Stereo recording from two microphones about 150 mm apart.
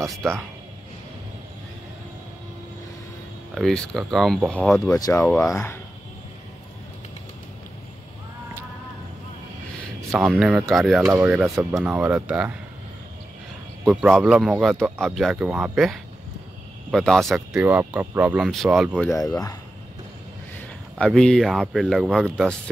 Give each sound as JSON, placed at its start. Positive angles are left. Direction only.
{"t": 0.1, "sound": "speech", "side_deg": 0}
{"t": 3.5, "sound": "speech", "side_deg": 5}
{"t": 4.9, "sound": "speech", "side_deg": 25}
{"t": 10.3, "sound": "speech", "side_deg": 0}
{"t": 11.0, "sound": "speech", "side_deg": -20}
{"t": 11.2, "sound": "speech", "side_deg": -5}
{"t": 13.8, "sound": "speech", "side_deg": 0}
{"t": 17.6, "sound": "speech", "side_deg": -10}
{"t": 18.4, "sound": "speech", "side_deg": 0}
{"t": 19.0, "sound": "speech", "side_deg": 25}
{"t": 21.0, "sound": "speech", "side_deg": 5}